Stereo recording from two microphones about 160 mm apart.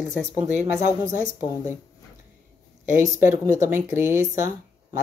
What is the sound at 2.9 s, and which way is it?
Speech, 15° right (ahead or behind).